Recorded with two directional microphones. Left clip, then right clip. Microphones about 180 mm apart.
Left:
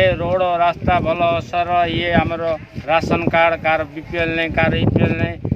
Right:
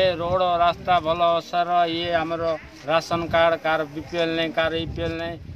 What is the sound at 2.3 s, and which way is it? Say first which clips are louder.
Speech: left 4 dB; 30° left (ahead or behind).